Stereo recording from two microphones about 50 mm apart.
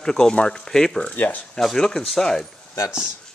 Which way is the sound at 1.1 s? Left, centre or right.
Left.